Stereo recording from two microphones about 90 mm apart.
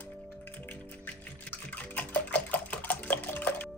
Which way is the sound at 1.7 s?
20° left (ahead or behind).